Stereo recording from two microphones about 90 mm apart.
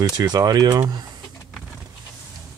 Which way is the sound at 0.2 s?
45° right (ahead or behind).